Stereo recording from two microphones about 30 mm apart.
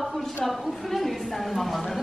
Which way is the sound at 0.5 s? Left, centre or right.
Centre.